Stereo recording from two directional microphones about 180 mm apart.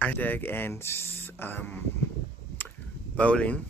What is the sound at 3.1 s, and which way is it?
Speech, 5° left (ahead or behind).